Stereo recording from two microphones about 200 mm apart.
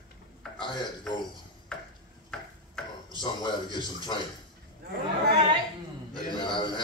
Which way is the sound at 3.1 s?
25° left (ahead or behind).